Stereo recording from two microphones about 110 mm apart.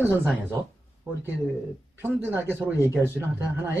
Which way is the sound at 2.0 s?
20° right (ahead or behind).